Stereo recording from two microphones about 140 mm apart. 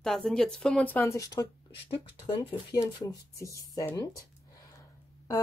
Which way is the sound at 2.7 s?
30° left (ahead or behind).